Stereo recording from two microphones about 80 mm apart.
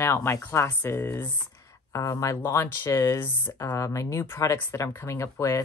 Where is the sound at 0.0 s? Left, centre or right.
Left.